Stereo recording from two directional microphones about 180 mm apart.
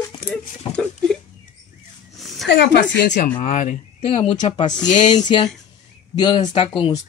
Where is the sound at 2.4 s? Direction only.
70° left (ahead or behind).